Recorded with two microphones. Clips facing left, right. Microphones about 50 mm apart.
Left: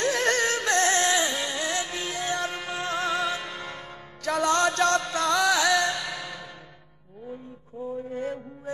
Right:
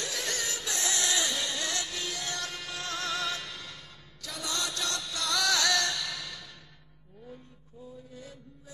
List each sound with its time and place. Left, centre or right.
0.0 s music: left
4.2 s music: left
5.4 s music: centre
7.9 s mantra: left